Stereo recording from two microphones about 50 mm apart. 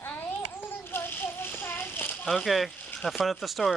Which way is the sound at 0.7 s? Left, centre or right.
Left.